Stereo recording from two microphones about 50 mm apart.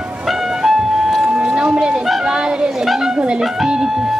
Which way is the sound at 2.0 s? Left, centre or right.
Centre.